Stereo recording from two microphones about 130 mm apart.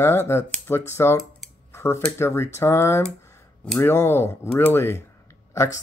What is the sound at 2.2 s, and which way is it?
Speech, 20° left (ahead or behind).